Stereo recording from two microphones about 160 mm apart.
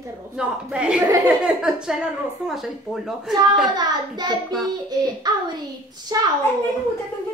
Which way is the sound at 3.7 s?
25° right (ahead or behind).